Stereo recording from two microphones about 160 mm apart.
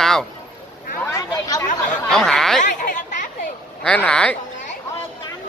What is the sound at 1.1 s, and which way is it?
Chatter, 20° left (ahead or behind).